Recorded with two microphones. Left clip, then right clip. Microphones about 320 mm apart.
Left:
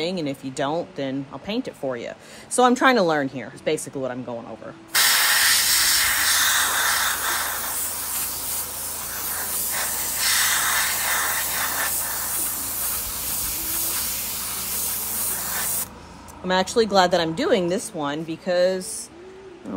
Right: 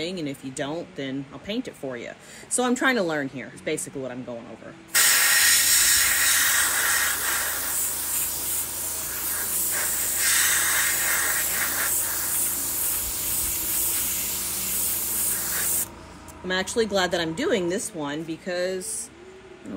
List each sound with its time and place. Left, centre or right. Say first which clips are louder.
0.0 s a woman's voice: left 4 dB; centre
4.9 s hiss: left 2 dB; centre
9.1 s spray: left 3 dB; centre
14.9 s spray: left 1 dB; centre
16.4 s a woman's voice: left 4 dB; centre